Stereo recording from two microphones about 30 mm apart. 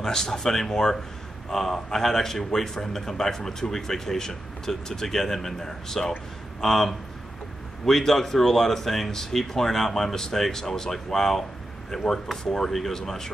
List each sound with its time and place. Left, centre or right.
0.0 s speech: centre